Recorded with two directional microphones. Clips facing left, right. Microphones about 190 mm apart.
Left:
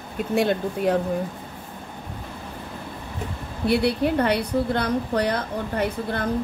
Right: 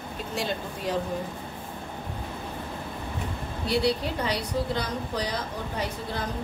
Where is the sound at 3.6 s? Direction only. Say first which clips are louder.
Left 5 dB; 55° left (ahead or behind).